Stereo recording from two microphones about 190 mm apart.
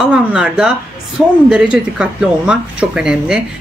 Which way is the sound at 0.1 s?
5° right (ahead or behind).